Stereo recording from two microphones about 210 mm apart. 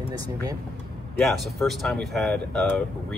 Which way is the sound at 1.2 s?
Centre (ahead or behind).